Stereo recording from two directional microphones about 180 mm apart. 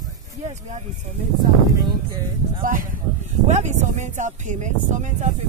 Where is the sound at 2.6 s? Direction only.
50° right (ahead or behind).